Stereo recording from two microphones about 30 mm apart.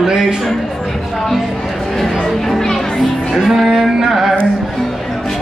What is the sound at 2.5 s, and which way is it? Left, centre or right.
Music, centre.